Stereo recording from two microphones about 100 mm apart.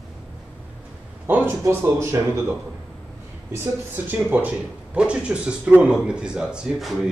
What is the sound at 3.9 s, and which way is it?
Speech, 15° right (ahead or behind).